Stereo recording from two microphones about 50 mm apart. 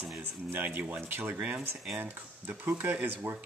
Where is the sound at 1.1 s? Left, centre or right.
Right.